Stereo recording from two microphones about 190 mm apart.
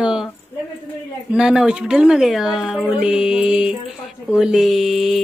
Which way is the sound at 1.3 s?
5° right (ahead or behind).